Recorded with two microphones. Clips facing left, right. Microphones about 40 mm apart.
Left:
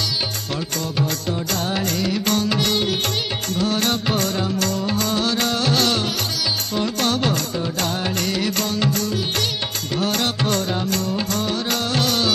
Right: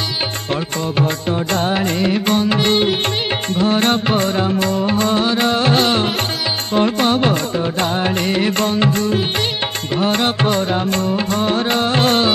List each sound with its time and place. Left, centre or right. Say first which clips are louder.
0.9 s music: right 5 dB; right